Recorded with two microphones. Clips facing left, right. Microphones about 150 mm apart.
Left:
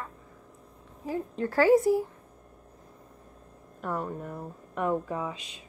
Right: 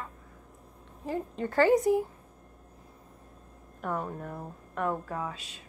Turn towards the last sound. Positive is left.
turn(degrees=10)  # may be behind; listen again after turning